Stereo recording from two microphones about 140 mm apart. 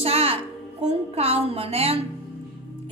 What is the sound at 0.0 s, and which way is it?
A woman's voice, 45° right (ahead or behind).